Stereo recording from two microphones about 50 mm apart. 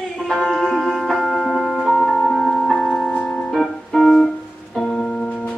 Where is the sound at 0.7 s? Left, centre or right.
Centre.